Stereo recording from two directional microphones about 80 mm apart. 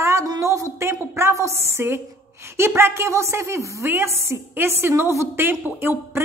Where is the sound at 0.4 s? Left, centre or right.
Right.